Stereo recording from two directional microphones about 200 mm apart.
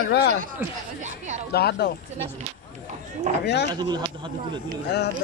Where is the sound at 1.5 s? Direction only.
50° left (ahead or behind).